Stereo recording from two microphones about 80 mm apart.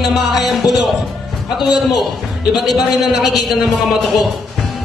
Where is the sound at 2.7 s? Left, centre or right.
Centre.